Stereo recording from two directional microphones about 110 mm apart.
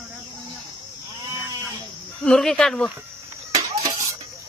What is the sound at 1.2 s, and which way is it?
Sheep, 35° right (ahead or behind).